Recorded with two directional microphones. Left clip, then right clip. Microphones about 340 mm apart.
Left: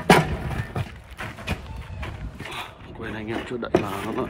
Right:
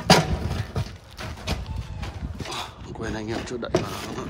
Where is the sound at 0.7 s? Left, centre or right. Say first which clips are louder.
Left 1 dB; centre.